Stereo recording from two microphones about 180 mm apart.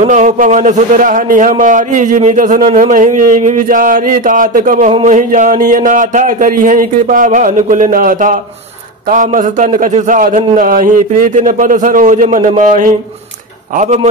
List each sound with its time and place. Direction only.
0.0 s a man's voice: 45° right (ahead or behind)